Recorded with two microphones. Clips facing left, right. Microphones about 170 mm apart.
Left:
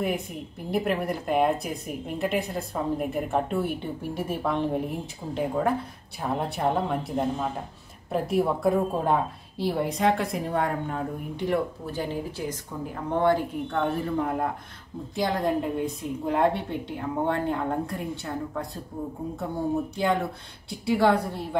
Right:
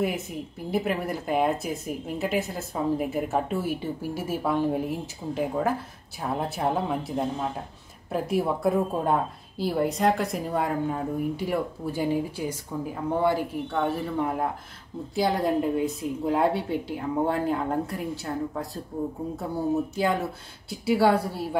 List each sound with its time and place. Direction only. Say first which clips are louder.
0.7 s speech: left 1 dB; centre (ahead or behind)
20.8 s speech: right 1 dB; 5° right (ahead or behind)